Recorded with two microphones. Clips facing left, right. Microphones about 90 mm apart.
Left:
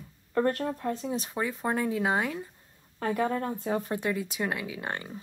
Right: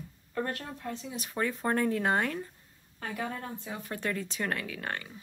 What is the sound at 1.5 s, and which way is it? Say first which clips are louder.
Speech: right 1 dB; 5° left (ahead or behind).